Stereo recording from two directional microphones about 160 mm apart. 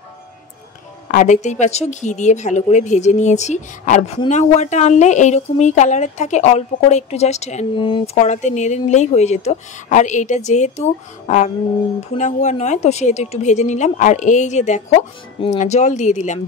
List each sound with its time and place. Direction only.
1.1 s speech: 50° left (ahead or behind)
7.7 s speech: 30° left (ahead or behind)
8.2 s speech: 45° left (ahead or behind)